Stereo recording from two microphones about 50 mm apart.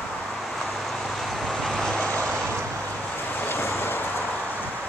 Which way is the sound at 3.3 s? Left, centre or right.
Left.